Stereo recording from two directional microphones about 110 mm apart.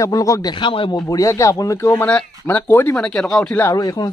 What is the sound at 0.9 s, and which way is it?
Speech, 30° left (ahead or behind).